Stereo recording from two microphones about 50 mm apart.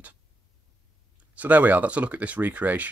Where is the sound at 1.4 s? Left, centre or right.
Right.